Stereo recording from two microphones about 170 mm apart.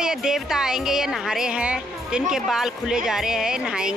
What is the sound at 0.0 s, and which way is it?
A woman's voice, 5° right (ahead or behind).